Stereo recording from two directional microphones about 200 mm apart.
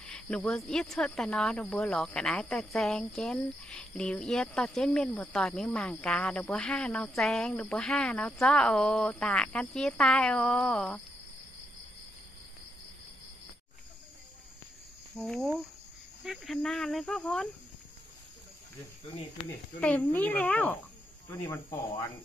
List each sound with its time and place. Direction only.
0.0 s speech: 5° left (ahead or behind)
15.1 s speech: centre (ahead or behind)
19.8 s a child's voice: 10° left (ahead or behind)